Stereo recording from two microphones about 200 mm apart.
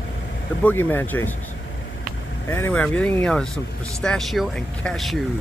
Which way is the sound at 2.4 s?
10° left (ahead or behind).